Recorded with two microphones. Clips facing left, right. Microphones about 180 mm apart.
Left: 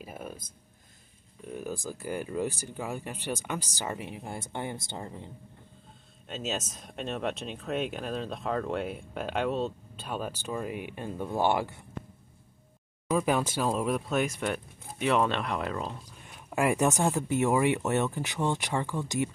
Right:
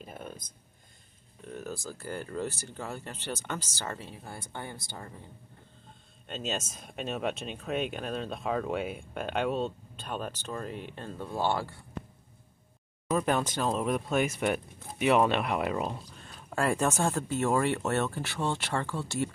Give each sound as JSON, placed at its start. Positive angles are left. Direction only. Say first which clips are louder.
{"t": 0.0, "sound": "a sound", "louder": "left 2 dB", "side_deg": 5}
{"t": 1.5, "sound": "speech", "louder": "left 3 dB", "side_deg": 10}
{"t": 6.2, "sound": "speech", "louder": "left 1 dB", "side_deg": 0}
{"t": 13.1, "sound": "speech", "louder": "left 1 dB", "side_deg": 5}
{"t": 16.2, "sound": "speech", "louder": "left 3 dB", "side_deg": 15}